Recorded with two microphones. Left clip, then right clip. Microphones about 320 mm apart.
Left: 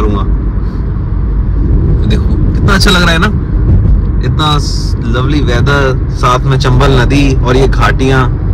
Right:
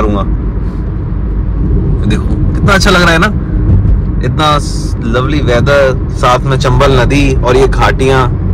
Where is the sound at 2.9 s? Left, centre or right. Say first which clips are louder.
Right 2 dB; right.